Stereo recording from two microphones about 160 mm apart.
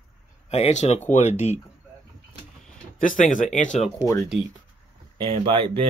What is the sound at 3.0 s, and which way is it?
Speech, 55° left (ahead or behind).